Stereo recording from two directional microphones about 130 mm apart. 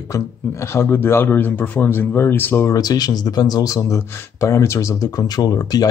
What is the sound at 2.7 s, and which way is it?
Speech, 30° left (ahead or behind).